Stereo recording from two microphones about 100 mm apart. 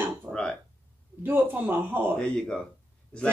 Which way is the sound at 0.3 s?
10° left (ahead or behind).